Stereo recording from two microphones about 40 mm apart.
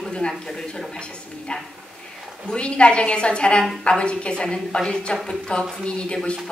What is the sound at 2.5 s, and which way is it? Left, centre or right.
Speech, left.